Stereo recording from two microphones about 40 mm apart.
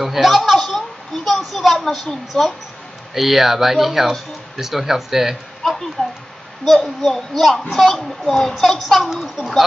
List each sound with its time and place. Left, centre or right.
0.0 s a sound: centre
2.3 s a woman's voice: centre
3.2 s speech: centre
5.6 s a sound: centre
7.0 s speech: centre
9.1 s a child's voice: centre